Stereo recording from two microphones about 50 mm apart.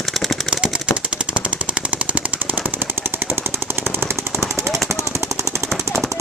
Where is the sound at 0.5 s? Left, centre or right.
Centre.